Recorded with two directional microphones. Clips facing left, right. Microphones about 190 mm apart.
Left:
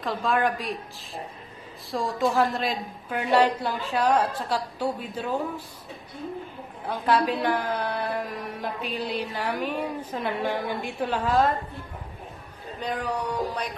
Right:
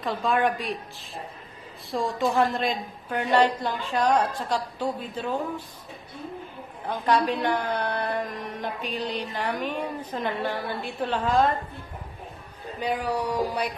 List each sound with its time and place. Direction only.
0.0 s a woman's voice: centre (ahead or behind)
6.9 s a woman's voice: 5° left (ahead or behind)
12.8 s a sound: 10° right (ahead or behind)